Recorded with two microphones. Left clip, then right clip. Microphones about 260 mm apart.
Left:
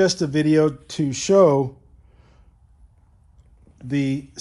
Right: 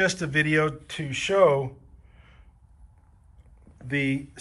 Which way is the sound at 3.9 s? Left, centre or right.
Left.